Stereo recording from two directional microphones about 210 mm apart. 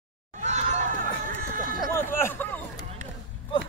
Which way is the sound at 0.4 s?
35° right (ahead or behind).